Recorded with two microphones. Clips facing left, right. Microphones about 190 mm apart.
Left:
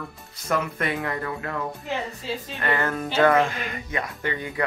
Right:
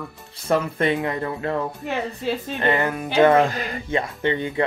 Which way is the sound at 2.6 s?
20° right (ahead or behind).